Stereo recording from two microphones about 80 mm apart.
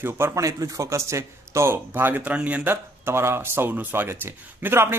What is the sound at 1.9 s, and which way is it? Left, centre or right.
Speech, right.